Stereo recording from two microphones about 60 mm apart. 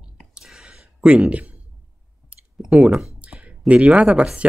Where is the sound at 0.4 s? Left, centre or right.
Centre.